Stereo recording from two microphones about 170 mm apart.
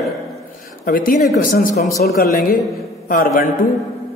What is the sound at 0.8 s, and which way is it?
Mantra, 55° left (ahead or behind).